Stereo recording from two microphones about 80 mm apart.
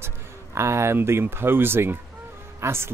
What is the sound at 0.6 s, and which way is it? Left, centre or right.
Speech, right.